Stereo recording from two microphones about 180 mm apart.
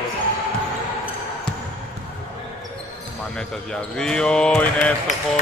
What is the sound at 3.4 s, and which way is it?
Speech, 5° left (ahead or behind).